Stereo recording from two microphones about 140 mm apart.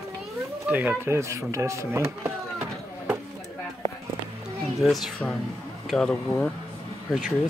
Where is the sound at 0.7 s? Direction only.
10° right (ahead or behind).